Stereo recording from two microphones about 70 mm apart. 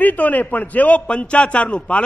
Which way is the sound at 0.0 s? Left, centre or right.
Left.